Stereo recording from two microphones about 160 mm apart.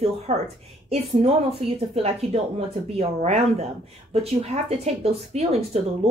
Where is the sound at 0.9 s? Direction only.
35° right (ahead or behind).